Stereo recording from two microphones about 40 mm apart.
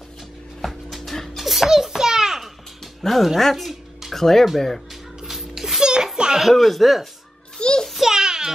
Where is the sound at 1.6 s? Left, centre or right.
Centre.